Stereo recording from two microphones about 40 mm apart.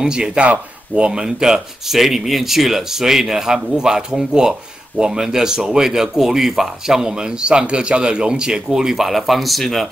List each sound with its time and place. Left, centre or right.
0.0 s speech: centre
1.1 s speech: centre